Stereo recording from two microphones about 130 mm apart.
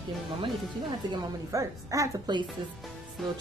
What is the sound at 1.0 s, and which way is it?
A woman's voice, 35° right (ahead or behind).